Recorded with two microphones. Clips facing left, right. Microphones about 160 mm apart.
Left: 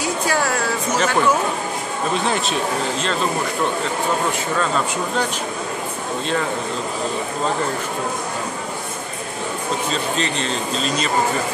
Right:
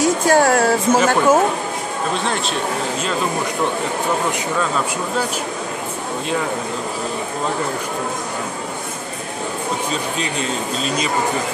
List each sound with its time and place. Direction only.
0.0 s speech: 50° right (ahead or behind)
2.2 s speech: 5° left (ahead or behind)
9.8 s speech: 10° right (ahead or behind)